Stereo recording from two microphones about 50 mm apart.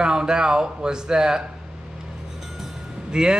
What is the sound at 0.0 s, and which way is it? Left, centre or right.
Speech, centre.